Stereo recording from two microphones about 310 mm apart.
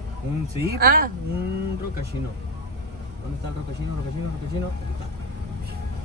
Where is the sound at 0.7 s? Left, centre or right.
Right.